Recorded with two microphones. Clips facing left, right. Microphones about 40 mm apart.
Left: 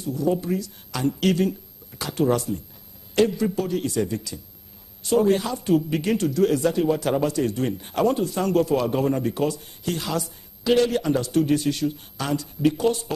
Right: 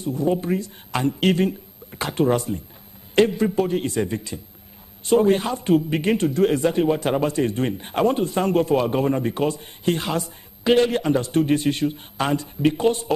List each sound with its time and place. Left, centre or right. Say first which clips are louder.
0.0 s a man's voice: right 2 dB; right